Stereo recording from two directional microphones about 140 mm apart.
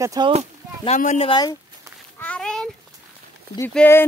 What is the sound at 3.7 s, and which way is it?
Speech, 15° left (ahead or behind).